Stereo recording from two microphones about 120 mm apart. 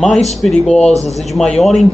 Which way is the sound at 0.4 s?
5° left (ahead or behind).